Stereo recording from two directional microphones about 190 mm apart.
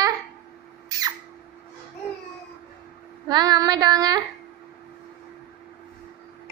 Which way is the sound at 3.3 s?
20° right (ahead or behind).